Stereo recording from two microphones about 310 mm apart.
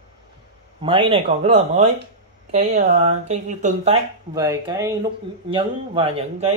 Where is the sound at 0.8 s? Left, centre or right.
Centre.